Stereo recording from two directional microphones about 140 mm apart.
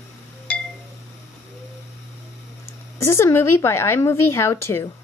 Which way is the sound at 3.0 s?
20° left (ahead or behind).